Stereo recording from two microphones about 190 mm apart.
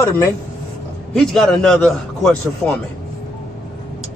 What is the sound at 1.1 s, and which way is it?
A man's voice, centre (ahead or behind).